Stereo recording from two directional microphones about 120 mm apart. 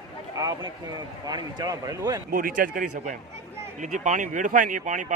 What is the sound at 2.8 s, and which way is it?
Speech, 90° right.